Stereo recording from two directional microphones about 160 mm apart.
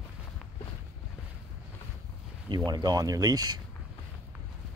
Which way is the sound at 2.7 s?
25° right (ahead or behind).